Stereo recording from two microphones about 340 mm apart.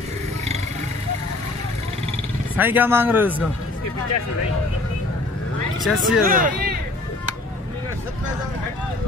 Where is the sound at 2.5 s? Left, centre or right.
Centre.